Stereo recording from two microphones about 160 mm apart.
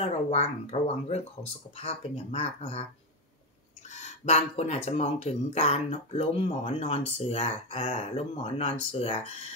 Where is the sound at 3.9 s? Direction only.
45° left (ahead or behind).